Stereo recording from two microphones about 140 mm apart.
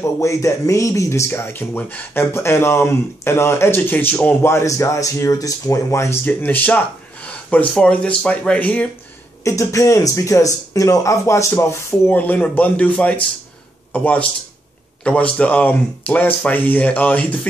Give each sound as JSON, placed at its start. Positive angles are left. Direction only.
{"t": 0.0, "sound": "speech", "side_deg": 20}
{"t": 9.4, "sound": "speech", "side_deg": 20}